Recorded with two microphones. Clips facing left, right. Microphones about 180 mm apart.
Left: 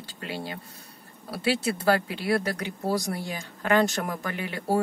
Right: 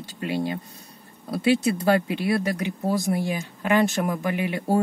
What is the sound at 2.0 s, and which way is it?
Speech, 15° right (ahead or behind).